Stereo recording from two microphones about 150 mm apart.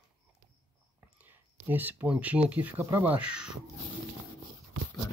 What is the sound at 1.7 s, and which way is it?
Speech, 10° right (ahead or behind).